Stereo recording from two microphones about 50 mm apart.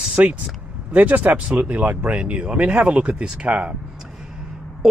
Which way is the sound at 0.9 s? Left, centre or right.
Right.